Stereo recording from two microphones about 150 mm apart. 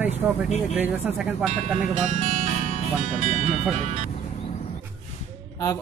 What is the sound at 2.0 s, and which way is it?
Speech, 55° right (ahead or behind).